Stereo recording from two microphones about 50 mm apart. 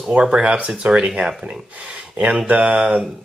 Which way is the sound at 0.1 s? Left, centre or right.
Right.